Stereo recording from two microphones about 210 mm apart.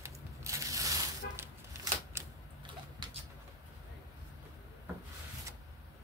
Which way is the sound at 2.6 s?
25° right (ahead or behind).